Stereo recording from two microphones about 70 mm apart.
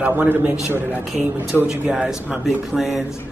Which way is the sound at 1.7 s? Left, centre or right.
Centre.